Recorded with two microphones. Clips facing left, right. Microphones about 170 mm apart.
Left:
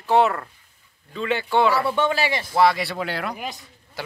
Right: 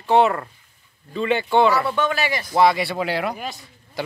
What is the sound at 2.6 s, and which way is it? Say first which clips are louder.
Speech: right 2 dB; centre (ahead or behind).